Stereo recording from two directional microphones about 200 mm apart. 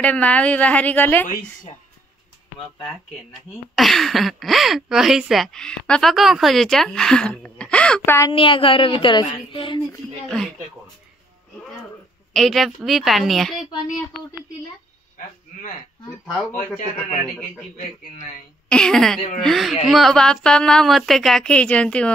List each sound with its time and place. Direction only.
0.0 s a woman's voice: 5° left (ahead or behind)
3.7 s speech: centre (ahead or behind)
8.3 s a woman's voice: 25° left (ahead or behind)
10.2 s speech: centre (ahead or behind)
12.3 s speech: centre (ahead or behind)
18.7 s speech: 5° left (ahead or behind)